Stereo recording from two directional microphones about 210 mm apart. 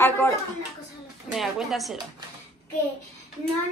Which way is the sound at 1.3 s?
Centre (ahead or behind).